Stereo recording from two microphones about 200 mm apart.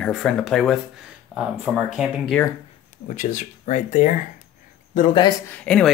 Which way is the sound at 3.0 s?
40° left (ahead or behind).